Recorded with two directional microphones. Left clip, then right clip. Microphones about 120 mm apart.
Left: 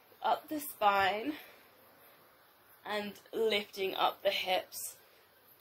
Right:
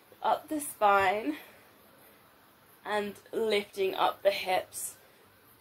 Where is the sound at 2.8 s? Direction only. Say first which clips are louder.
Right 6 dB; 25° left (ahead or behind).